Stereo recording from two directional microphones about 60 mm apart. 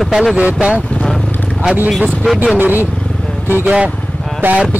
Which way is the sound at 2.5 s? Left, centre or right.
Right.